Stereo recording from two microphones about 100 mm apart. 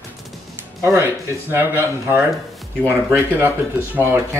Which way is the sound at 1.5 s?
25° right (ahead or behind).